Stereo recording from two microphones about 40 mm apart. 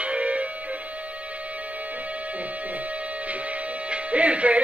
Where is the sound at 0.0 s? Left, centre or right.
Right.